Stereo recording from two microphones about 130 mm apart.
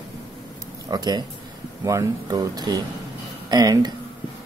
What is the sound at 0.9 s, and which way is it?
Speech, 30° right (ahead or behind).